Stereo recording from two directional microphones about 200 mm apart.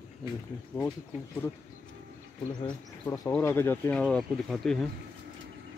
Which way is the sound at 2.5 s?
20° left (ahead or behind).